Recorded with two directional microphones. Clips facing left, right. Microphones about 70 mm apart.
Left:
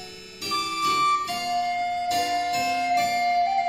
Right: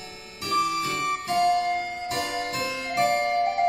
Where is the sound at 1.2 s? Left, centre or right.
Right.